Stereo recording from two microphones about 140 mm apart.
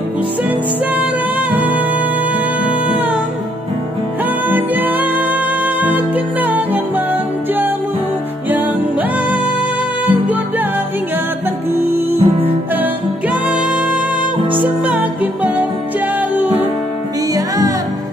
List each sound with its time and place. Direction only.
2.6 s music: 10° right (ahead or behind)
4.5 s music: 10° right (ahead or behind)
11.9 s music: 15° right (ahead or behind)
17.3 s music: 25° right (ahead or behind)